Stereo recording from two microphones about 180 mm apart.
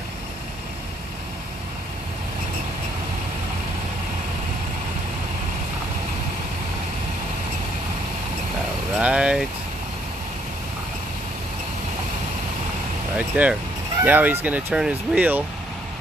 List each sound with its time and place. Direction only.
8.9 s vehicle: 5° right (ahead or behind)
13.4 s speech: 10° right (ahead or behind)